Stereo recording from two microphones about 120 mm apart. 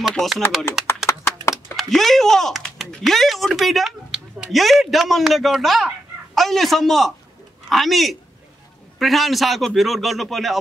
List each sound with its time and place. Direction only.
0.1 s a man's voice: centre (ahead or behind)
1.0 s clapping: 20° left (ahead or behind)
1.5 s a man's voice: centre (ahead or behind)